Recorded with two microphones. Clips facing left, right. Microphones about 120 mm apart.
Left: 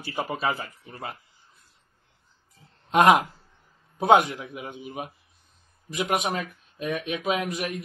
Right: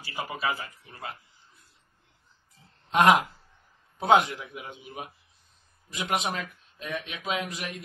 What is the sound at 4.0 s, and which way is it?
A man's voice, 25° left (ahead or behind).